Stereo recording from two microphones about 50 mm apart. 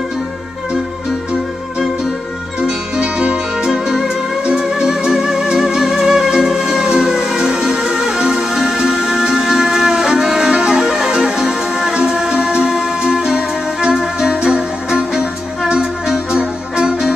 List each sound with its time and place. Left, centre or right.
3.0 s music: right